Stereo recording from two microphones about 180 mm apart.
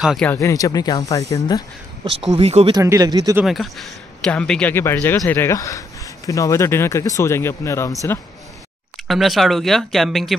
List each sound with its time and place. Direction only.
0.0 s speech: centre (ahead or behind)
0.3 s speech: 15° left (ahead or behind)
2.3 s speech: 30° right (ahead or behind)
2.8 s speech: 20° right (ahead or behind)
3.4 s speech: centre (ahead or behind)
9.0 s speech: centre (ahead or behind)